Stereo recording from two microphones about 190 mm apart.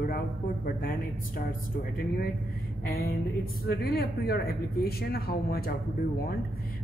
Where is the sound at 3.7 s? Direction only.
55° left (ahead or behind).